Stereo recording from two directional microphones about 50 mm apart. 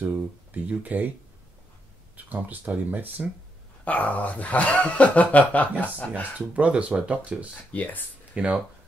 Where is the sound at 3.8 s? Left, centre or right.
Left.